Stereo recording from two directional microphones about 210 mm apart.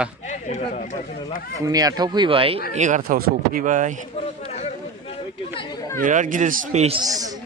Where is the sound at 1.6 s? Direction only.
15° right (ahead or behind); by 4.0 s 35° right (ahead or behind).